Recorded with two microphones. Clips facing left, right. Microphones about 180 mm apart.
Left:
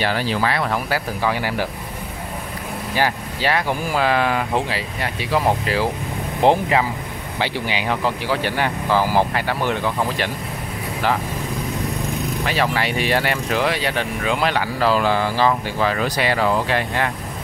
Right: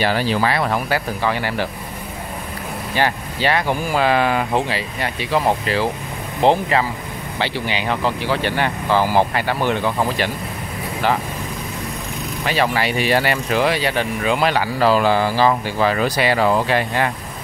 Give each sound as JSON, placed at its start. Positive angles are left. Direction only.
{"t": 0.0, "sound": "speech", "side_deg": -10}
{"t": 0.8, "sound": "speech", "side_deg": 5}
{"t": 3.0, "sound": "speech", "side_deg": 5}
{"t": 12.7, "sound": "speech", "side_deg": -5}
{"t": 14.8, "sound": "speech", "side_deg": -35}
{"t": 15.3, "sound": "speech", "side_deg": -5}